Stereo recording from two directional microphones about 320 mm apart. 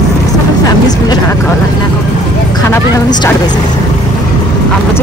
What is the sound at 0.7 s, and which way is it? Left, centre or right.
Music, centre.